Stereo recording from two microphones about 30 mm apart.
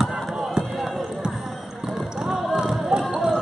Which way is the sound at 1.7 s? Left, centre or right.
Centre.